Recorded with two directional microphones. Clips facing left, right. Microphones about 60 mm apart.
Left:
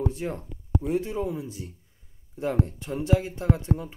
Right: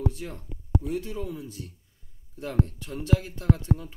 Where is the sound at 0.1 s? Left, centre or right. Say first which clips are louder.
Left 6 dB; left.